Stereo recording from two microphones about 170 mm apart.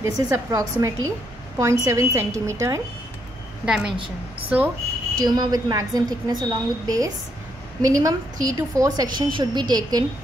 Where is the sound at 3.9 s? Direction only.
30° right (ahead or behind).